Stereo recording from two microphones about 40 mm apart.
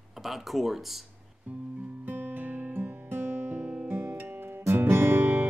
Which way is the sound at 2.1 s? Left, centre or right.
Right.